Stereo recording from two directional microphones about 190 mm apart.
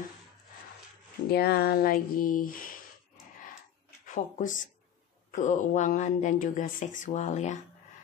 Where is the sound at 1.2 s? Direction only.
55° left (ahead or behind).